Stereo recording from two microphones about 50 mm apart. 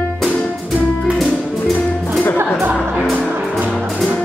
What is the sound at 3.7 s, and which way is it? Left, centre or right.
Music, centre.